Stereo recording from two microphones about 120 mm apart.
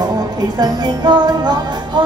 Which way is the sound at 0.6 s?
35° right (ahead or behind).